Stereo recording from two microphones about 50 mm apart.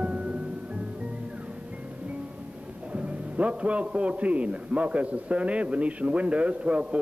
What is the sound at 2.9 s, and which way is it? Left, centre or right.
A man's voice, right.